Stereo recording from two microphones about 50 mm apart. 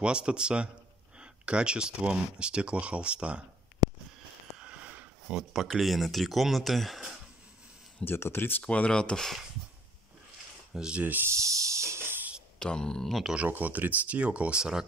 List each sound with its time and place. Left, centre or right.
0.0 s speech: centre
4.6 s a sound: right
5.5 s speech: centre
8.0 s speech: left
8.6 s speech: left
10.9 s speech: right
11.2 s snake: right
12.0 s a sound: right
12.5 s speech: centre
13.5 s speech: right
14.6 s speech: centre